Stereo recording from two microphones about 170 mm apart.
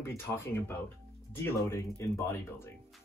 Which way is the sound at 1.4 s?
15° left (ahead or behind).